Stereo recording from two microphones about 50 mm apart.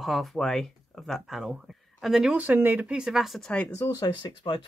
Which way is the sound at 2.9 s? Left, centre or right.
Centre.